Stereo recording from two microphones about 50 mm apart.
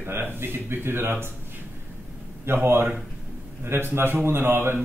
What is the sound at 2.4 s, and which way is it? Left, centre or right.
Speech, right.